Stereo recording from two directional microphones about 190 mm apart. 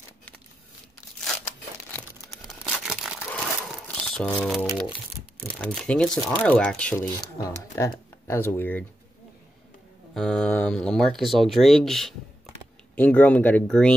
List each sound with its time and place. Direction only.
2.0 s a sound: centre (ahead or behind)
3.3 s crumpling: 5° left (ahead or behind)
4.6 s speech: centre (ahead or behind)
7.3 s speech: 15° left (ahead or behind)
10.1 s speech: 5° left (ahead or behind)